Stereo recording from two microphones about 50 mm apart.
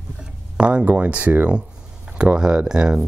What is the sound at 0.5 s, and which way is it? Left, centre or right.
Speech, right.